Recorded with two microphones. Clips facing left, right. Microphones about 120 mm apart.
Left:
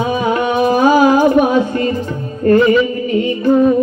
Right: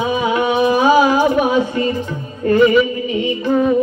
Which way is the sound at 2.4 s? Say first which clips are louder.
Left 2 dB; 45° left (ahead or behind).